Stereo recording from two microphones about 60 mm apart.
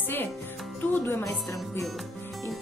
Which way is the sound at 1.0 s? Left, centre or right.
Left.